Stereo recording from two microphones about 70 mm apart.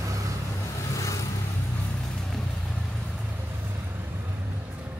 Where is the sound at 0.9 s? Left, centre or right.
Left.